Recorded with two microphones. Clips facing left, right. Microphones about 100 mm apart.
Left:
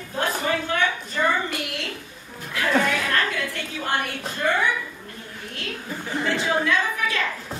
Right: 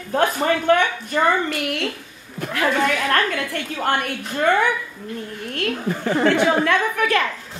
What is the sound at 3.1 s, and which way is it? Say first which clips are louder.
A woman's voice: right 4 dB; 60° right (ahead or behind).